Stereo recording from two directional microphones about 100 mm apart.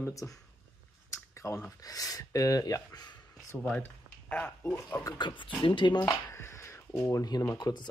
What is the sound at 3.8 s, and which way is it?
Speech, 15° left (ahead or behind).